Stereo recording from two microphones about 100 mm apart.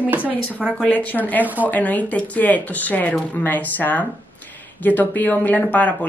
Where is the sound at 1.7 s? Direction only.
15° left (ahead or behind).